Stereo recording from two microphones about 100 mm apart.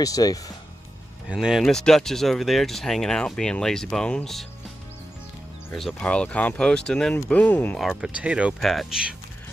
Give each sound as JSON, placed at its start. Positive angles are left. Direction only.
{"t": 0.0, "sound": "speech", "side_deg": 35}
{"t": 1.3, "sound": "speech", "side_deg": -5}
{"t": 1.6, "sound": "speech", "side_deg": 5}
{"t": 5.8, "sound": "speech", "side_deg": 5}
{"t": 7.8, "sound": "speech", "side_deg": 0}
{"t": 8.5, "sound": "speech", "side_deg": 0}